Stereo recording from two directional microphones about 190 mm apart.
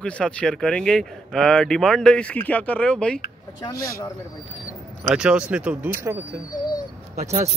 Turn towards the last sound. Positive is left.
turn(degrees=-35)  # may be behind; listen again after turning